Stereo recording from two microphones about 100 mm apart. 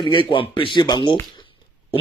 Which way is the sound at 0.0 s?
55° left (ahead or behind).